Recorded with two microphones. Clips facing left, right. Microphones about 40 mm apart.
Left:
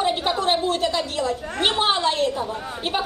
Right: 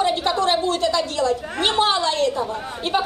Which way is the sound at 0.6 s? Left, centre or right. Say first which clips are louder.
Right 2 dB; centre.